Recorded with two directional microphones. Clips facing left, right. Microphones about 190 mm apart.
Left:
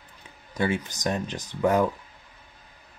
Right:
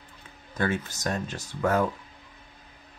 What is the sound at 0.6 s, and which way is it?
Speech, 15° left (ahead or behind).